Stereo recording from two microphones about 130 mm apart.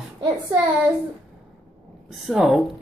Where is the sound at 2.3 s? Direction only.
5° right (ahead or behind).